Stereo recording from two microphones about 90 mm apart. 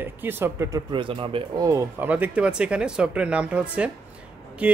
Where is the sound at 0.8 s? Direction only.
65° right (ahead or behind).